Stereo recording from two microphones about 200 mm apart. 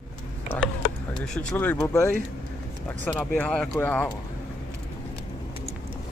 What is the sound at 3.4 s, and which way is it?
Speech, 5° left (ahead or behind).